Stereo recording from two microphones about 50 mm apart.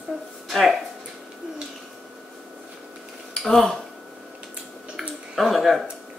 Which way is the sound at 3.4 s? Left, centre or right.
Centre.